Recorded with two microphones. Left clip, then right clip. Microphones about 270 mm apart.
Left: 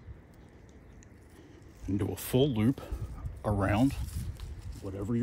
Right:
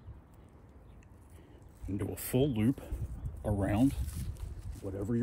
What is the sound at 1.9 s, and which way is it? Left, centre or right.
Speech, left.